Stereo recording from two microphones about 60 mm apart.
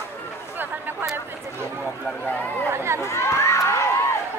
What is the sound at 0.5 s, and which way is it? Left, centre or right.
Chatter, right.